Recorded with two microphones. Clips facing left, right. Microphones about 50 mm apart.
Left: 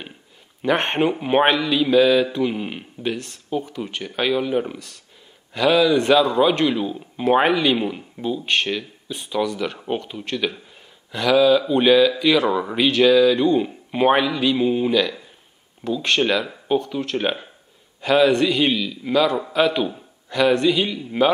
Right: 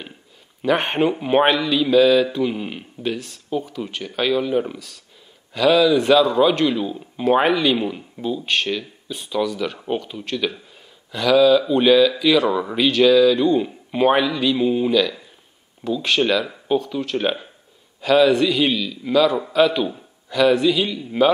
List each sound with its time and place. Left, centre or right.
0.6 s speech: centre
16.4 s speech: centre